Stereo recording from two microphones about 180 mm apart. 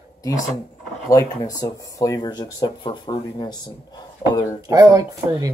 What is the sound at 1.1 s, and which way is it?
Speech, 20° left (ahead or behind).